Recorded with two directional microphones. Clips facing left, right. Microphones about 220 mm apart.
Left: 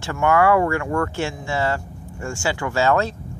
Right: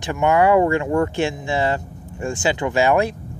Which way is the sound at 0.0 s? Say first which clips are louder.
Right 1 dB; 20° right (ahead or behind).